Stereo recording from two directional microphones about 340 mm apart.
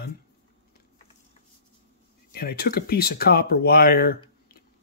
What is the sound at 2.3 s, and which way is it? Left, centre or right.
Speech, left.